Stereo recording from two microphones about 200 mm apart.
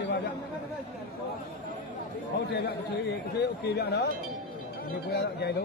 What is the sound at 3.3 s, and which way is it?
Speech, 55° left (ahead or behind).